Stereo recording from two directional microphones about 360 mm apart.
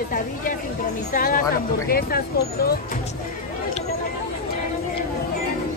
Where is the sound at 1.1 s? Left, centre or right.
Left.